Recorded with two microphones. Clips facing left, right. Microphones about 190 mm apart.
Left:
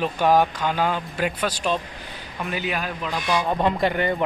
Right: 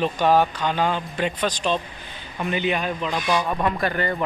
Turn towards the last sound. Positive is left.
turn(degrees=15)  # may be behind; listen again after turning